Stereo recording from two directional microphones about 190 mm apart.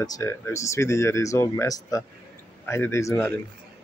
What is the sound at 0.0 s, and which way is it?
Speech, 15° left (ahead or behind).